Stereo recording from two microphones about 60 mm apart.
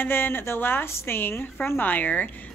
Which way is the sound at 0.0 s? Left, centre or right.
Left.